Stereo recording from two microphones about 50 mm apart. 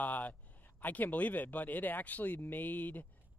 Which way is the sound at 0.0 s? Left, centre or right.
Left.